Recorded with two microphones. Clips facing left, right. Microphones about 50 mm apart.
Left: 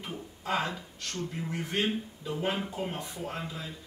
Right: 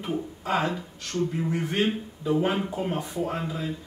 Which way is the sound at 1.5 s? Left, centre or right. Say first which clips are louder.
Right 1 dB; centre.